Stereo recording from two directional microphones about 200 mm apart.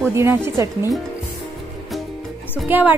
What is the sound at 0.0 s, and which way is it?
Speech, 10° right (ahead or behind).